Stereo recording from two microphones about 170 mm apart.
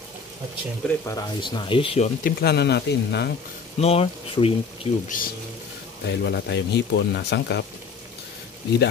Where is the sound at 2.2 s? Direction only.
75° left (ahead or behind).